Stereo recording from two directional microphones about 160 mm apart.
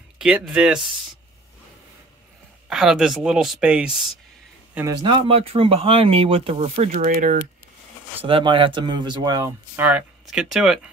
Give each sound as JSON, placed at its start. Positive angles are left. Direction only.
{"t": 0.2, "sound": "speech", "side_deg": -5}
{"t": 2.7, "sound": "speech", "side_deg": -5}
{"t": 5.0, "sound": "speech", "side_deg": -35}
{"t": 8.2, "sound": "speech", "side_deg": -35}
{"t": 9.8, "sound": "speech", "side_deg": -10}